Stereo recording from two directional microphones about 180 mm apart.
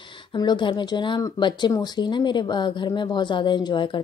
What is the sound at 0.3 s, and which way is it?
Speech, 25° left (ahead or behind).